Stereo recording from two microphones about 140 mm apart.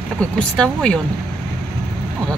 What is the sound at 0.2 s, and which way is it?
Speech, 5° left (ahead or behind).